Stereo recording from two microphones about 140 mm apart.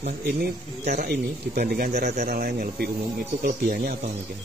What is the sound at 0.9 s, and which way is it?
Speech, 90° right.